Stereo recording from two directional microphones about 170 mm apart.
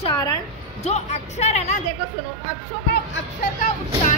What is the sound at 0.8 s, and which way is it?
Speech, 40° left (ahead or behind).